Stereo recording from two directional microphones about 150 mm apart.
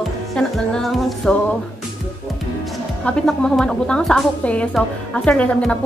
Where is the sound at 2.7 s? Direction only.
5° left (ahead or behind).